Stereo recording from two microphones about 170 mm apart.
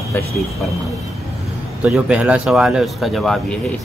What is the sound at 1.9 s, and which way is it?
Speech, 5° right (ahead or behind).